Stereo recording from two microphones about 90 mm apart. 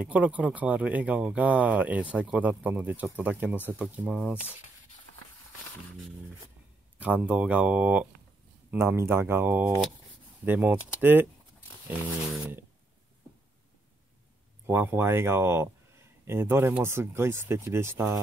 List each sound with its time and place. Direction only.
0.0 s speech: 15° right (ahead or behind)
7.0 s speech: 15° right (ahead or behind)
8.6 s speech: 30° right (ahead or behind)
14.7 s speech: 25° right (ahead or behind)